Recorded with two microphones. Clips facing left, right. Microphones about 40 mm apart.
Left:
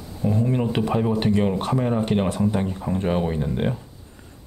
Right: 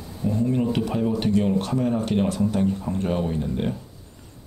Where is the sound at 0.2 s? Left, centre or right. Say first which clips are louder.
Left 1 dB; left.